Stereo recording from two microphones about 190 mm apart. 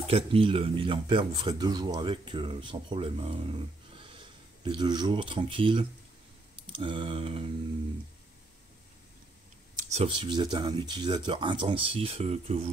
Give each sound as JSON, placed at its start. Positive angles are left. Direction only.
{"t": 0.1, "sound": "speech", "side_deg": -30}
{"t": 10.0, "sound": "speech", "side_deg": -25}